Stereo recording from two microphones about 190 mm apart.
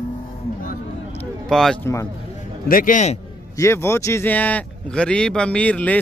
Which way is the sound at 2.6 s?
45° left (ahead or behind).